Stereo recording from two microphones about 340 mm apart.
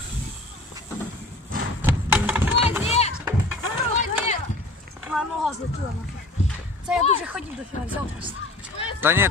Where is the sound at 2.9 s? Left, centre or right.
Centre.